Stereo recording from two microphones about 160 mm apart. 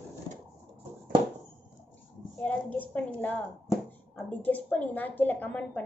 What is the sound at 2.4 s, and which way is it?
A woman's voice, 10° left (ahead or behind).